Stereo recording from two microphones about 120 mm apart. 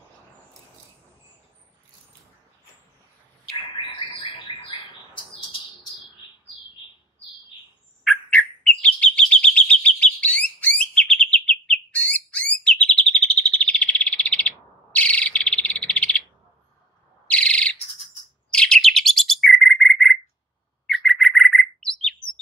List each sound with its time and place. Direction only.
3.8 s bird: 45° left (ahead or behind)
8.0 s bird: centre (ahead or behind)
8.4 s chirp: 10° left (ahead or behind)
15.0 s bird: 10° left (ahead or behind)
17.3 s bird: 10° left (ahead or behind)
18.5 s chirp: 5° left (ahead or behind)
20.8 s bird: centre (ahead or behind)